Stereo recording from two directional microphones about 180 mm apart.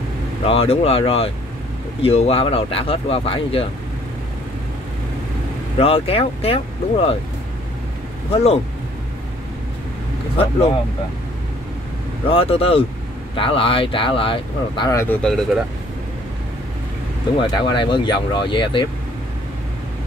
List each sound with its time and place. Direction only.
0.5 s speech: 35° left (ahead or behind)
5.8 s speech: 35° left (ahead or behind)
8.3 s speech: 35° left (ahead or behind)
10.3 s speech: 30° left (ahead or behind)
12.3 s speech: 30° left (ahead or behind)
14.9 s speech: 15° left (ahead or behind)
15.2 s speech: centre (ahead or behind)
17.4 s speech: 25° left (ahead or behind)